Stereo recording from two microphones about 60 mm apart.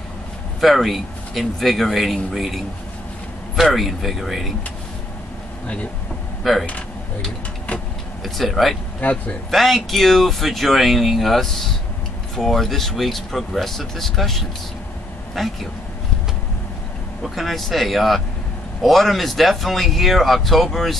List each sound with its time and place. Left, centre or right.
0.6 s speech: centre
3.7 s speech: centre
6.4 s speech: centre
8.2 s speech: centre
9.0 s a man's voice: left
9.5 s speech: centre
17.2 s speech: centre